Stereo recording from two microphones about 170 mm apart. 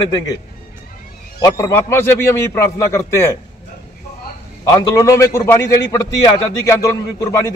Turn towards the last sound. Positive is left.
turn(degrees=20)  # may be behind; listen again after turning